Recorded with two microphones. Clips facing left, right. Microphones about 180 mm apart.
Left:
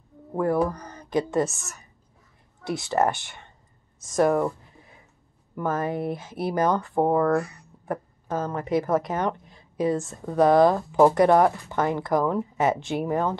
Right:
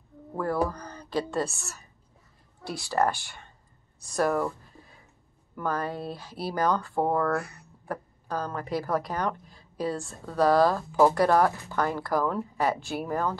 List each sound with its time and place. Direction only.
0.3 s a woman's voice: 20° left (ahead or behind)
4.0 s a sound: 20° left (ahead or behind)
5.6 s a woman's voice: 20° left (ahead or behind)